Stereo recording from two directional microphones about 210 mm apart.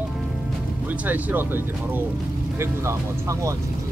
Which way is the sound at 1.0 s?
10° right (ahead or behind).